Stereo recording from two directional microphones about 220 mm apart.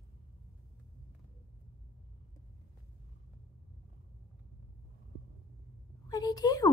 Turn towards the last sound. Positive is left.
turn(degrees=15)  # may be behind; listen again after turning